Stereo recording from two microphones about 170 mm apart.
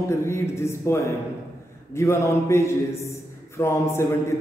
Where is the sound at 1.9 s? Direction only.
15° left (ahead or behind).